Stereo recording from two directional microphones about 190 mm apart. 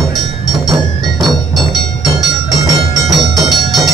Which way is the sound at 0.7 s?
20° right (ahead or behind).